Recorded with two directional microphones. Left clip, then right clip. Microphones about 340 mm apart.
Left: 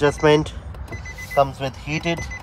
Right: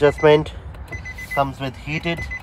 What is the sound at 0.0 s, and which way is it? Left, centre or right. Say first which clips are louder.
Speech: right 3 dB; centre.